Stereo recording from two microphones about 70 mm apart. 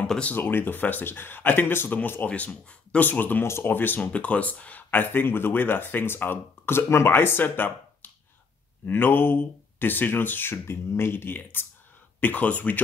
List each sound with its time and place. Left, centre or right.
0.0 s speech: centre
0.4 s speech: left
2.2 s speech: centre
4.0 s speech: centre